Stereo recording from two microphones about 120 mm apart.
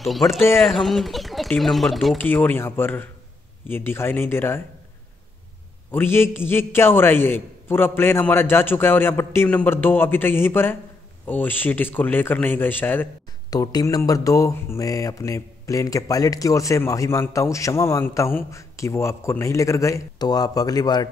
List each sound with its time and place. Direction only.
0.0 s speech: centre (ahead or behind)
0.4 s speech: 20° left (ahead or behind)
0.7 s speech: centre (ahead or behind)
2.1 s speech: 15° left (ahead or behind)
5.9 s speech: 20° left (ahead or behind)
13.5 s speech: 30° left (ahead or behind)